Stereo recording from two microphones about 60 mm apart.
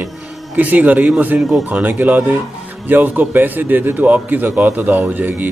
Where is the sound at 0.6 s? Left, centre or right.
Right.